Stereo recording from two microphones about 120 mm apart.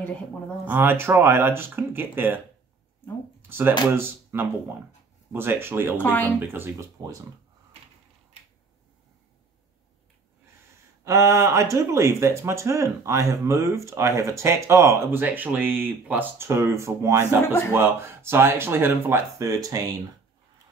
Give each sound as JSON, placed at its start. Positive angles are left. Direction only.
{"t": 0.7, "sound": "speech", "side_deg": -20}
{"t": 3.4, "sound": "speech", "side_deg": -20}
{"t": 5.9, "sound": "speech", "side_deg": 15}
{"t": 6.4, "sound": "speech", "side_deg": -20}
{"t": 7.0, "sound": "speech", "side_deg": -35}
{"t": 11.1, "sound": "speech", "side_deg": -25}